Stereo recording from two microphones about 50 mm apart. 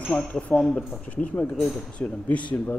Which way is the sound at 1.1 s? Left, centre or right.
Left.